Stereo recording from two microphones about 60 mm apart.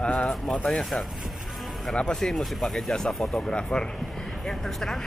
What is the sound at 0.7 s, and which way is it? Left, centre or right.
Speech, centre.